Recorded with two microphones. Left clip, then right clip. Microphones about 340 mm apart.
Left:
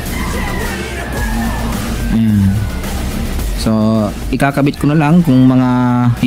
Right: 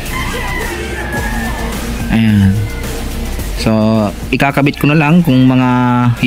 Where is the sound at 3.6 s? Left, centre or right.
Centre.